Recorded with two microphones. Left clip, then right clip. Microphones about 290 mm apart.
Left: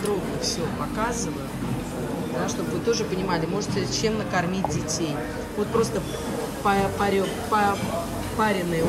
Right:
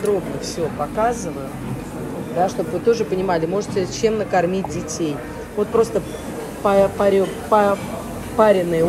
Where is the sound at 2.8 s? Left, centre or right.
Centre.